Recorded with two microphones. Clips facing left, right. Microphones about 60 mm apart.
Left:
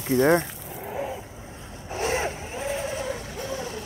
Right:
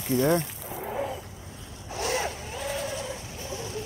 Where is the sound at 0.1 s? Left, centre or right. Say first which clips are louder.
Left 4 dB; left.